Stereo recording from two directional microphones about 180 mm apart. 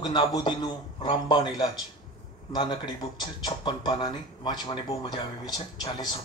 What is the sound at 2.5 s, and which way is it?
Speech, 25° left (ahead or behind).